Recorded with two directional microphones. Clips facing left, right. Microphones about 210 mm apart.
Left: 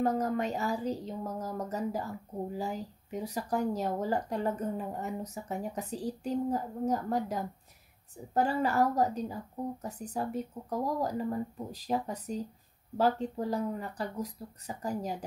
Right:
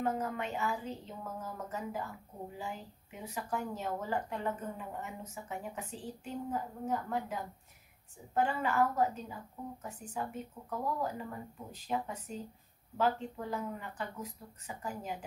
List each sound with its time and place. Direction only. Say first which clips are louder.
0.0 s speech: left 6 dB; 40° left (ahead or behind)